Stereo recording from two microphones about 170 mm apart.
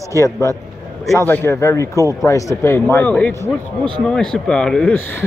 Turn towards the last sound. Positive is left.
turn(degrees=5)  # may be behind; listen again after turning